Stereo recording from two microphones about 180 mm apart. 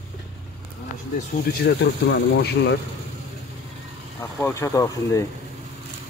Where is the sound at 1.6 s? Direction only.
70° left (ahead or behind).